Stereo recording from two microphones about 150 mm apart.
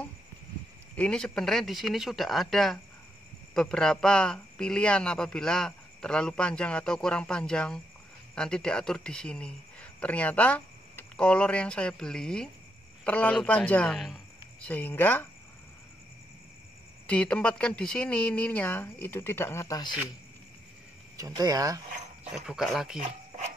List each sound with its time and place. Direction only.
0.9 s speech: 5° left (ahead or behind)
14.7 s speech: 10° left (ahead or behind)
17.1 s speech: 5° left (ahead or behind)
21.2 s speech: 25° right (ahead or behind)
22.3 s speech: centre (ahead or behind)